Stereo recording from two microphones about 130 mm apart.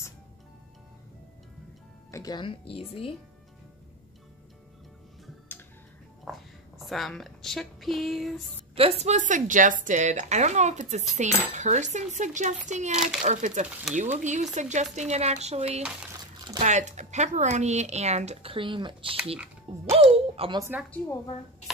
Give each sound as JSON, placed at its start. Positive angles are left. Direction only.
{"t": 2.0, "sound": "music", "side_deg": 25}
{"t": 2.3, "sound": "speech", "side_deg": 40}
{"t": 6.8, "sound": "speech", "side_deg": 0}
{"t": 8.7, "sound": "speech", "side_deg": -50}
{"t": 12.9, "sound": "speech", "side_deg": -5}
{"t": 13.2, "sound": "speech", "side_deg": -70}
{"t": 16.3, "sound": "a sound", "side_deg": -30}
{"t": 16.6, "sound": "speech", "side_deg": -65}